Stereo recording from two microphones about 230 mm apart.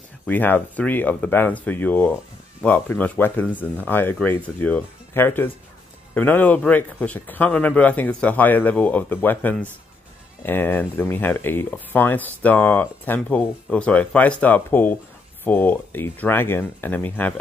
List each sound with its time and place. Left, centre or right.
0.3 s speech: centre